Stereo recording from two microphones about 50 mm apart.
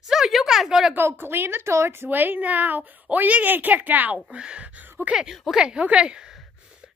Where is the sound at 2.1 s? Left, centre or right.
Right.